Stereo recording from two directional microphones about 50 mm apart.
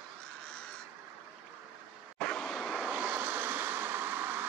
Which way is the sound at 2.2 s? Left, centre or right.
Centre.